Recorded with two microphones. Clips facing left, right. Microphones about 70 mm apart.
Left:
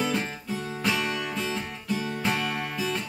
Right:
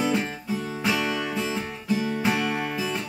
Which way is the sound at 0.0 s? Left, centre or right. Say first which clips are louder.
Right 3 dB; centre.